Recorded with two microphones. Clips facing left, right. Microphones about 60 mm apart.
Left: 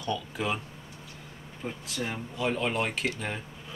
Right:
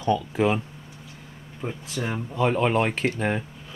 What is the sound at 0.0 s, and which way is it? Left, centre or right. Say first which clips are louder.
Speech: right 9 dB; right.